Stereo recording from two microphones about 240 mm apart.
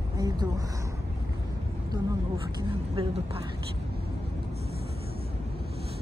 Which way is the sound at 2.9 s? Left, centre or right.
Right.